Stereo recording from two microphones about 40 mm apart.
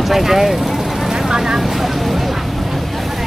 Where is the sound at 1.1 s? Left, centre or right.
Centre.